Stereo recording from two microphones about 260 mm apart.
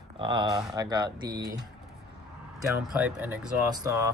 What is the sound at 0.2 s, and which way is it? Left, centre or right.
Speech, centre.